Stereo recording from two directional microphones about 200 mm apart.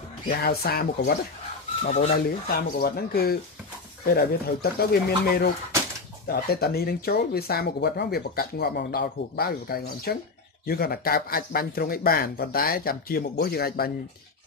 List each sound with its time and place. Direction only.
0.4 s speech: 50° left (ahead or behind)
1.8 s chicken: 35° left (ahead or behind)
2.8 s speech: 50° left (ahead or behind)